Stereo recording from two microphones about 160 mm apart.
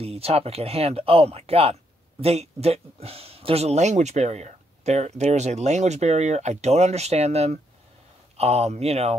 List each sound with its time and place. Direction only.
0.0 s speech: 40° right (ahead or behind)